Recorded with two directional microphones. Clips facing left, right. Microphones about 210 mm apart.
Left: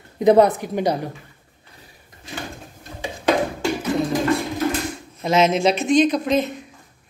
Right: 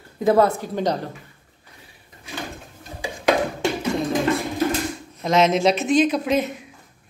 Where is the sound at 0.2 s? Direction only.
20° left (ahead or behind).